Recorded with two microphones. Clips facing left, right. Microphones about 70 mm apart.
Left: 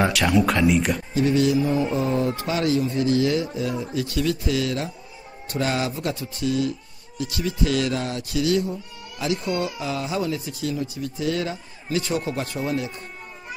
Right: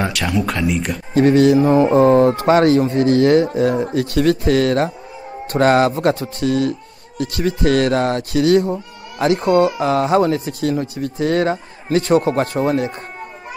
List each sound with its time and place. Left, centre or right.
0.0 s speech: centre
1.1 s speech: right